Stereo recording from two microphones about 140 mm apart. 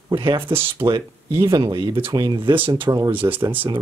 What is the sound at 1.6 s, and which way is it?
Speech, 35° right (ahead or behind).